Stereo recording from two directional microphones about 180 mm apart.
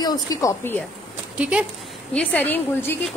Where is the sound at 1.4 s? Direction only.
5° right (ahead or behind).